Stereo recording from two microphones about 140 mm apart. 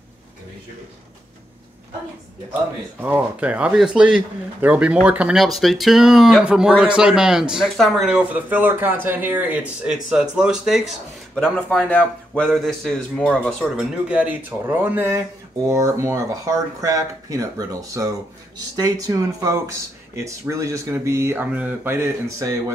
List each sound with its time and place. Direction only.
3.0 s speech: 10° right (ahead or behind)
14.0 s speech: 10° right (ahead or behind)